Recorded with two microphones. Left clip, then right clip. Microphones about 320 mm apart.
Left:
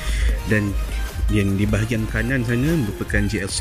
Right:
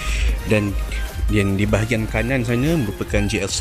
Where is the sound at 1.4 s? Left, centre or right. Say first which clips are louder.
Right 4 dB; centre.